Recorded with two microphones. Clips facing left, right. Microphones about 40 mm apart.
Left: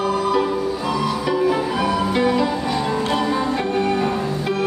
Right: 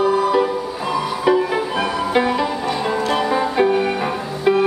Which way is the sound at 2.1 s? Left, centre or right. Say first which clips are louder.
Even; centre.